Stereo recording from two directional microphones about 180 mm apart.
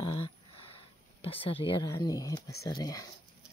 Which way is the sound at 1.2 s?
30° left (ahead or behind).